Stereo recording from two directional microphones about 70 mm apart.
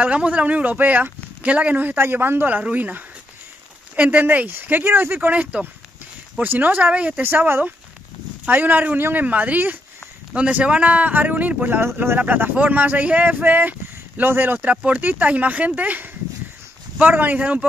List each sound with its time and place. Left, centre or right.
0.0 s speech: centre; by 5.3 s right
5.3 s speech: centre
12.2 s speech: right